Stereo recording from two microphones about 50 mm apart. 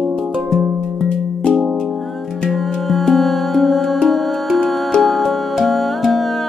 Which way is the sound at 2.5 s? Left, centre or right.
Centre.